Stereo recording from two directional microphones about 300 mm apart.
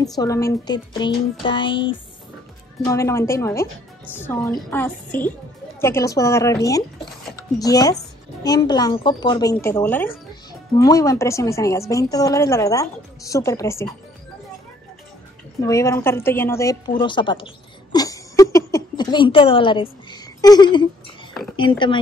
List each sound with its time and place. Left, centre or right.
0.2 s a woman's voice: centre
15.6 s a woman's voice: centre
17.9 s a sound: centre
21.5 s a woman's voice: centre